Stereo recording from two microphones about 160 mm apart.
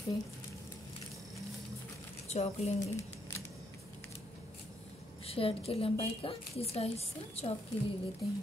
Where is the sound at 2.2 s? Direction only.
45° left (ahead or behind).